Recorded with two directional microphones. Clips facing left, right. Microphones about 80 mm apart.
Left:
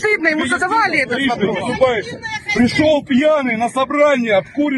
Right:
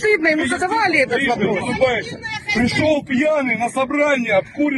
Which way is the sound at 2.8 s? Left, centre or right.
Left.